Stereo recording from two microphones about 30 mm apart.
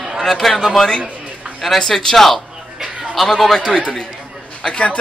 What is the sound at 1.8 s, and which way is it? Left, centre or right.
Speech, centre.